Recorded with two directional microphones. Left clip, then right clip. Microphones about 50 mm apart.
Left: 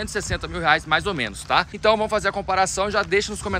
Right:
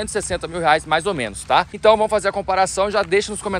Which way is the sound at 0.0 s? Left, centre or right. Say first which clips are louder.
Right 4 dB; left.